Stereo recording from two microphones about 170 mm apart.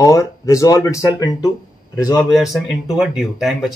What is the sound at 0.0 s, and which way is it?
Speech, 20° left (ahead or behind).